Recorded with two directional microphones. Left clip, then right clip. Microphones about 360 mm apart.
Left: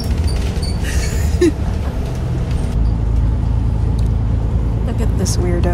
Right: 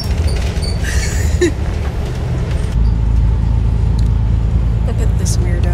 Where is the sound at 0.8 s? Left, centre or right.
Centre.